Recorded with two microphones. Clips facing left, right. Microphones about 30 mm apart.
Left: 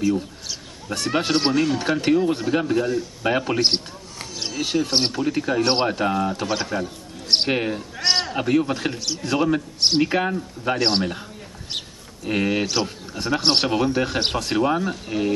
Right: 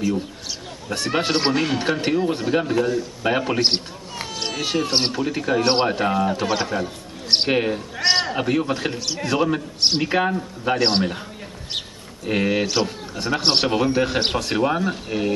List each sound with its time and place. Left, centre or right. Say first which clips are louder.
0.8 s a man's voice: even; centre
1.5 s speech: left 1 dB; right
1.8 s a man's voice: left 1 dB; centre
4.8 s a man's voice: even; centre
12.3 s a man's voice: right 1 dB; centre